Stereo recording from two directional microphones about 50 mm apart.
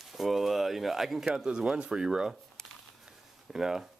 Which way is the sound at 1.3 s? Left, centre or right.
Centre.